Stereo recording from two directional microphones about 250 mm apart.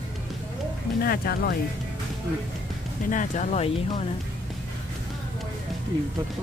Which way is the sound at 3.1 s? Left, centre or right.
Left.